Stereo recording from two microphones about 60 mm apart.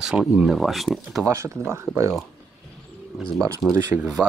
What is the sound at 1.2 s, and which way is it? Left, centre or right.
Speech, right.